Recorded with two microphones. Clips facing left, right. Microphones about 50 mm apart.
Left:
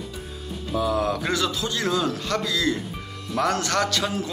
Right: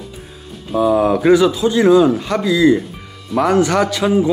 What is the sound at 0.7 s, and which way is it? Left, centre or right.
A man's voice, centre.